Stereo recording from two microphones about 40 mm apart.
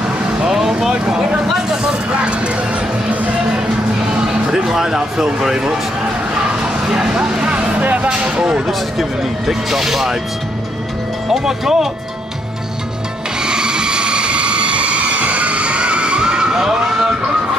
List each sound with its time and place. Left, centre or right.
0.4 s vehicle: centre
1.0 s speech: right
1.9 s vehicle: right
4.3 s speech: centre
6.5 s a sound: centre
7.8 s music: right
8.1 s speech: right
9.5 s speech: centre
11.2 s speech: centre
13.4 s vehicle: centre